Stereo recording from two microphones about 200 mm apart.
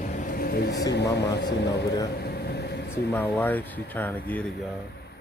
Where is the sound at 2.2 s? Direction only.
55° left (ahead or behind).